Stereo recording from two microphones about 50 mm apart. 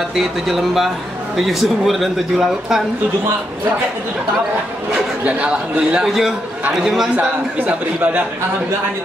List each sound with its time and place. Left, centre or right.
0.1 s a man's voice: centre
5.2 s a man's voice: right
6.0 s a man's voice: centre
7.2 s a man's voice: right